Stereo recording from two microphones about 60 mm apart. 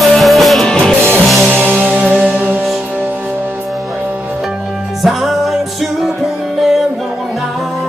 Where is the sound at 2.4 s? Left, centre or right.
Right.